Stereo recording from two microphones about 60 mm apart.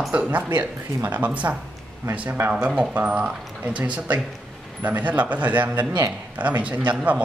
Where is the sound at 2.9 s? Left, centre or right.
Right.